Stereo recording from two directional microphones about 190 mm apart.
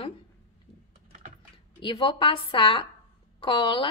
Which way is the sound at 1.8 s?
25° left (ahead or behind).